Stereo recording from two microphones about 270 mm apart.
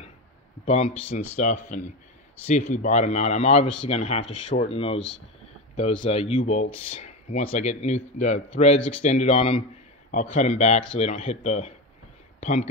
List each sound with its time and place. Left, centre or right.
1.1 s speech: left
6.0 s speech: left